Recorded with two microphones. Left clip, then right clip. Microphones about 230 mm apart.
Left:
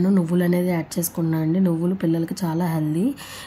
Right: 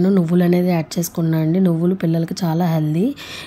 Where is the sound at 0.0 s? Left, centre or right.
Centre.